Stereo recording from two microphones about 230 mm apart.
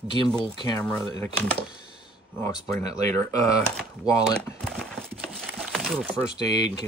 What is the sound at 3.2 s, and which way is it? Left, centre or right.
Speech, centre.